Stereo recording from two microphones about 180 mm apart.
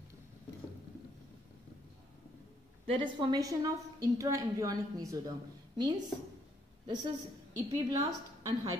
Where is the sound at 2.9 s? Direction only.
25° right (ahead or behind).